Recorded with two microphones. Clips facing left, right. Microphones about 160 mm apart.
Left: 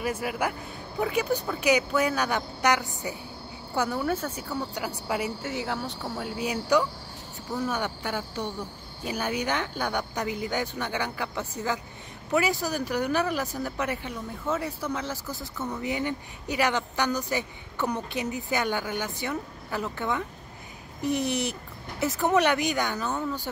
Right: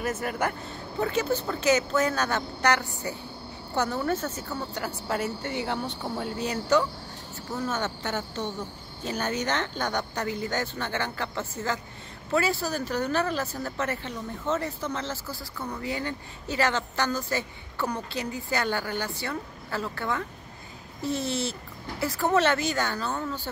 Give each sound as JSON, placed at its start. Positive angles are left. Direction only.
{"t": 0.0, "sound": "speech", "side_deg": 10}